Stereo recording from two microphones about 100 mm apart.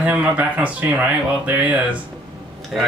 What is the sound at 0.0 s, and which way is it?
Speech, 15° right (ahead or behind).